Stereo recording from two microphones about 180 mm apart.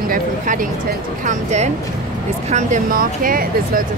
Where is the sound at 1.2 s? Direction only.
40° right (ahead or behind).